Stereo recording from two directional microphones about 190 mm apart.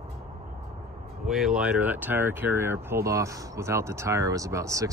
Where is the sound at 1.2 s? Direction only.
Centre (ahead or behind).